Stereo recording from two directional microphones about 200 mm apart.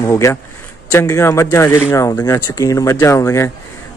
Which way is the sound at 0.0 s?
15° left (ahead or behind).